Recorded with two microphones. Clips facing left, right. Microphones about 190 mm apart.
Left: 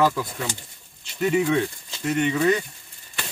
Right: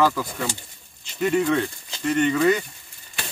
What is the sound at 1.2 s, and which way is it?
Speech, 5° left (ahead or behind).